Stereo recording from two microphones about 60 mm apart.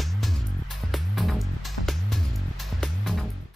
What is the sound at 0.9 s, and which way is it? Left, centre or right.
Music, centre.